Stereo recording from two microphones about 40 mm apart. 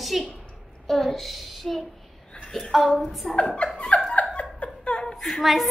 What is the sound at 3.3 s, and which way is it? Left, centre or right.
Speech, left.